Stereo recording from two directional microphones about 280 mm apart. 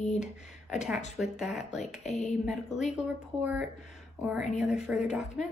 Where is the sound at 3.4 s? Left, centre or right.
Centre.